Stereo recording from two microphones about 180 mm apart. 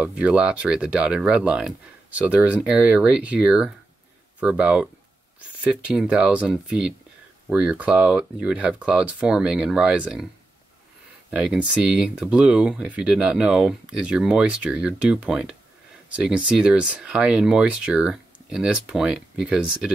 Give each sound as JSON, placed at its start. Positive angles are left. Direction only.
{"t": 0.0, "sound": "speech", "side_deg": -5}
{"t": 11.2, "sound": "speech", "side_deg": -5}